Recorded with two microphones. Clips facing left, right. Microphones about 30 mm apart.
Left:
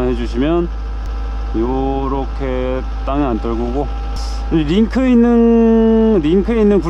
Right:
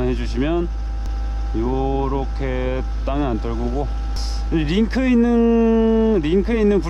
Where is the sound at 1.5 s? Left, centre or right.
Left.